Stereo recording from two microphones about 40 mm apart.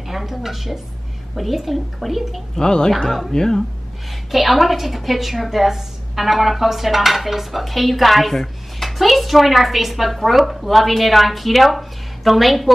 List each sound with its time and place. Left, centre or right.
0.1 s a woman's voice: centre
2.5 s a woman's voice: centre
4.3 s a woman's voice: centre